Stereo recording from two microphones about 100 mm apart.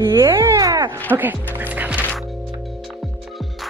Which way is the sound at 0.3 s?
30° right (ahead or behind).